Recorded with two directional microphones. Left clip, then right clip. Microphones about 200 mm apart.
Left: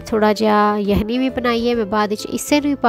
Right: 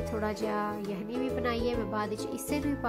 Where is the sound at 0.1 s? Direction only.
45° left (ahead or behind).